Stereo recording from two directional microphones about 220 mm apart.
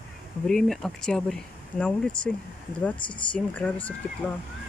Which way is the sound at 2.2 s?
35° right (ahead or behind).